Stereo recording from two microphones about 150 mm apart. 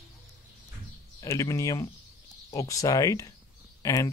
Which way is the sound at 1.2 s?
20° left (ahead or behind).